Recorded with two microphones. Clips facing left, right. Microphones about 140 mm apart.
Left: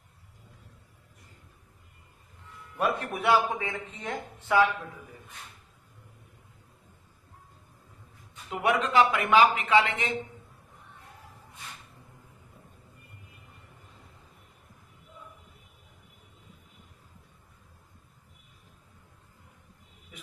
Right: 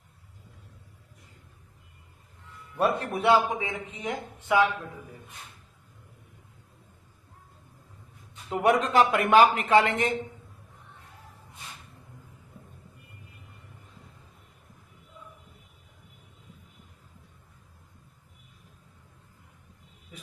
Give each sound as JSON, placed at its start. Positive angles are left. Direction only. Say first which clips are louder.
{"t": 2.8, "sound": "speech", "louder": "right 3 dB", "side_deg": -30}
{"t": 8.5, "sound": "a man's voice", "louder": "right 3 dB", "side_deg": -40}